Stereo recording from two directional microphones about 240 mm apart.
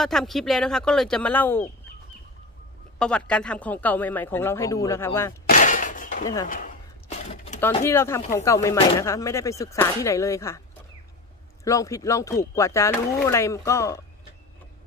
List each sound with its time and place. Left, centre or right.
0.0 s speech: centre
3.0 s speech: centre
5.5 s a sound: left
7.8 s speech: centre
11.6 s speech: centre